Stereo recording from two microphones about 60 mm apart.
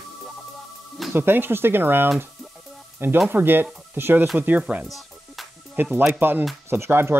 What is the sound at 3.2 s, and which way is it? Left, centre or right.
Speech, right.